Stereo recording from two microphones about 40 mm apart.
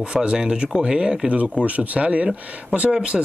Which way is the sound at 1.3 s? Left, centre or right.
Right.